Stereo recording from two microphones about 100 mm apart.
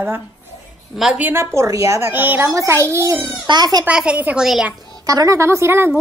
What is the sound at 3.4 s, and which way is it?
Speech, 45° right (ahead or behind).